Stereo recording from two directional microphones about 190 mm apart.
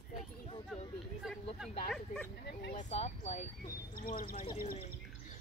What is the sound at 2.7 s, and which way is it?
Speech, 35° left (ahead or behind).